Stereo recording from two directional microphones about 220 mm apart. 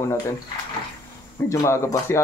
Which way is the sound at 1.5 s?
15° left (ahead or behind).